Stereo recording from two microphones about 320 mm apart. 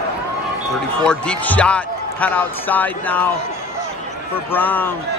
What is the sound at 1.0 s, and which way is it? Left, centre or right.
Speech, centre.